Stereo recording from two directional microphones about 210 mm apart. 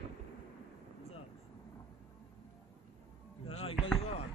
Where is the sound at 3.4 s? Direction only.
25° left (ahead or behind).